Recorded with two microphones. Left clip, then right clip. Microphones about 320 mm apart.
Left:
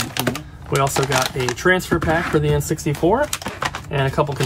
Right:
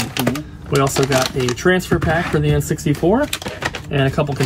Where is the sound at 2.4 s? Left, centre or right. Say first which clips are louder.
Even; left.